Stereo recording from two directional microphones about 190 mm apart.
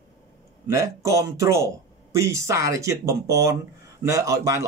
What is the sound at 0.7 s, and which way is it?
Speech, 15° right (ahead or behind).